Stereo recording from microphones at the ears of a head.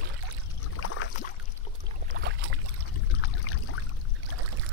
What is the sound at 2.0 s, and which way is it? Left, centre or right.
Boat, right.